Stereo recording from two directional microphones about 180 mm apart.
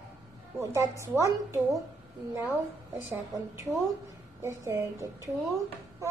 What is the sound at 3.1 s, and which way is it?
Speech, 15° right (ahead or behind).